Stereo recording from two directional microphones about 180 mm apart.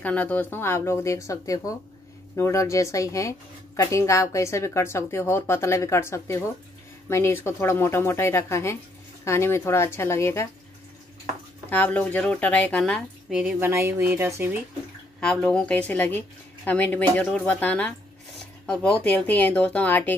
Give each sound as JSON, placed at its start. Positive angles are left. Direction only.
{"t": 0.0, "sound": "speech", "side_deg": 10}
{"t": 11.7, "sound": "a woman's voice", "side_deg": 10}
{"t": 15.1, "sound": "speech", "side_deg": 5}